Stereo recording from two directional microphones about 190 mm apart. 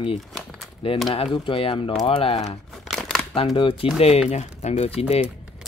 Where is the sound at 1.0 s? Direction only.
25° left (ahead or behind).